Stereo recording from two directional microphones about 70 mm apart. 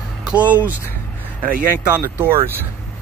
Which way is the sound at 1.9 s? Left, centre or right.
Right.